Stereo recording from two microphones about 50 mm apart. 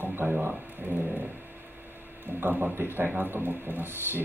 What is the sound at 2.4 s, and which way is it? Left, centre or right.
Speech, right.